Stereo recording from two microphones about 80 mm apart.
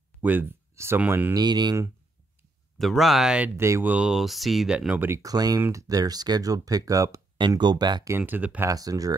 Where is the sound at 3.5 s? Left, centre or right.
Right.